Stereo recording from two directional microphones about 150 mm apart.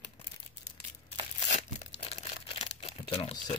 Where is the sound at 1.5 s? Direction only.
45° left (ahead or behind).